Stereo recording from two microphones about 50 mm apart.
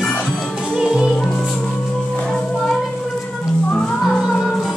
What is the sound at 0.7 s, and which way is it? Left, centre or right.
Music, centre.